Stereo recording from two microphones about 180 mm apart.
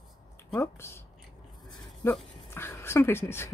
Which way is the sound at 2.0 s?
10° left (ahead or behind).